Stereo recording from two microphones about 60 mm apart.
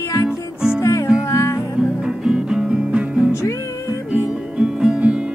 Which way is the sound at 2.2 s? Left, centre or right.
Centre.